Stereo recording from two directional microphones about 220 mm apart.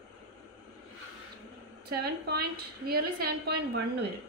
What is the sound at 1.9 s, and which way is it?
A woman's voice, 45° right (ahead or behind).